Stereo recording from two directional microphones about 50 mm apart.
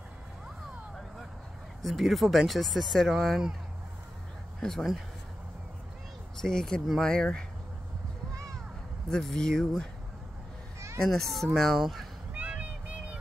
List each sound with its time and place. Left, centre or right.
1.8 s speech: centre
3.2 s speech: centre
4.6 s speech: centre
6.4 s speech: centre
9.2 s speech: centre
11.0 s speech: centre
12.4 s vehicle: right